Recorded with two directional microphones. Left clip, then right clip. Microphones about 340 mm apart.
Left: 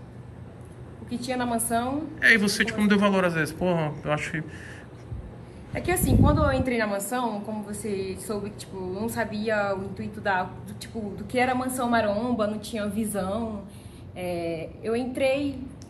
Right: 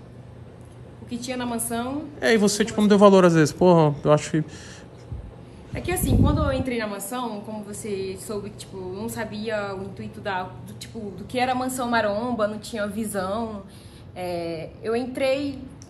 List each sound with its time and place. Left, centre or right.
1.1 s a woman's voice: centre
5.7 s a woman's voice: centre